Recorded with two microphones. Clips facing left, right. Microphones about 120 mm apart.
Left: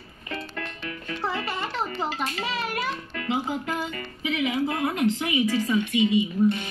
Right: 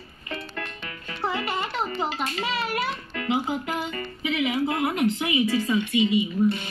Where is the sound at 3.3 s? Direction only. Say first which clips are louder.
Right 1 dB; 5° right (ahead or behind).